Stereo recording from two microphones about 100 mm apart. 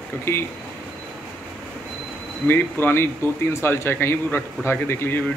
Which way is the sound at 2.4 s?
20° left (ahead or behind).